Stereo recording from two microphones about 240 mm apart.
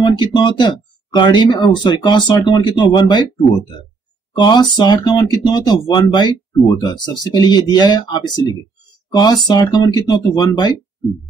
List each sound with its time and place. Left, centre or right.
0.0 s speech: centre